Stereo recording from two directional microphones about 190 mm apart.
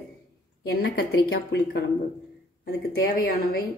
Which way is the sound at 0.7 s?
60° left (ahead or behind).